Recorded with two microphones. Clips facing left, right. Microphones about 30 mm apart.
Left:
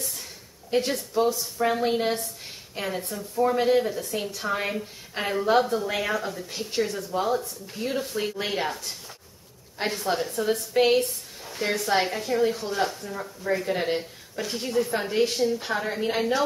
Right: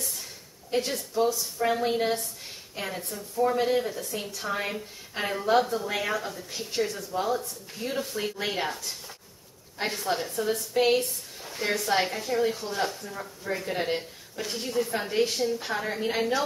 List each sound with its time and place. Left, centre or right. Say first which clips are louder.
0.7 s a woman's voice: left 3 dB; centre